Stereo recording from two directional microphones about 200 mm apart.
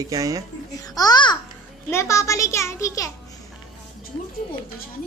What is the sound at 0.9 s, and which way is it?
A child's voice, 20° left (ahead or behind).